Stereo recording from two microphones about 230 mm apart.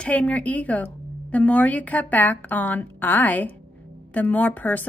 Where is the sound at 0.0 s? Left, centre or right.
Centre.